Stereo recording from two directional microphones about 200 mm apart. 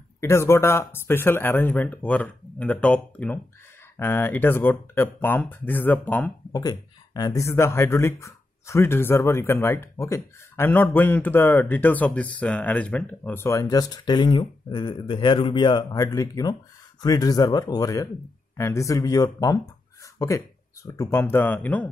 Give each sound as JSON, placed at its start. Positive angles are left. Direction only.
{"t": 0.2, "sound": "speech", "side_deg": 15}
{"t": 6.5, "sound": "speech", "side_deg": 20}